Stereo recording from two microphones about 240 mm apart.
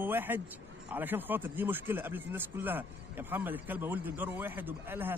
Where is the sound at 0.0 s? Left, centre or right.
Centre.